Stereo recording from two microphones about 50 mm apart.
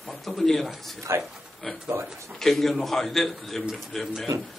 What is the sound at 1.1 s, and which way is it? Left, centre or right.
Speech, right.